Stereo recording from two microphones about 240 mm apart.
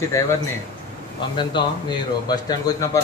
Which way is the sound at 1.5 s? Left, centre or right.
Centre.